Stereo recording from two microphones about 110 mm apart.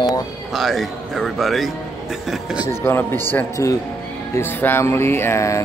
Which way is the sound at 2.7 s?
20° left (ahead or behind).